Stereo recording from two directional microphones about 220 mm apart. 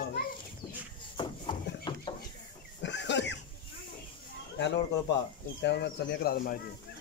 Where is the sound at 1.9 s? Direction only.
20° left (ahead or behind).